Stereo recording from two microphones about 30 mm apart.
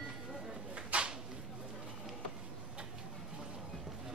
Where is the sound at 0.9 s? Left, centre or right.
Right.